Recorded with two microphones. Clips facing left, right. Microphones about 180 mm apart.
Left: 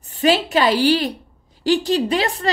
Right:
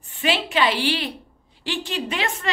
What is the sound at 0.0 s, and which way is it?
A woman's voice, 40° left (ahead or behind).